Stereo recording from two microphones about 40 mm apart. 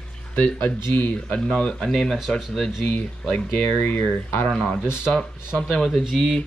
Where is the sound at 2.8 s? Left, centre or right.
Left.